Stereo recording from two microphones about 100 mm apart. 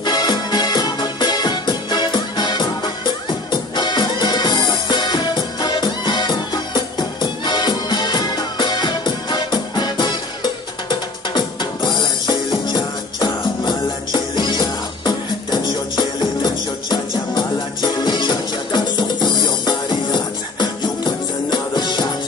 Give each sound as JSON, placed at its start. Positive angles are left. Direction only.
{"t": 0.0, "sound": "music", "side_deg": 45}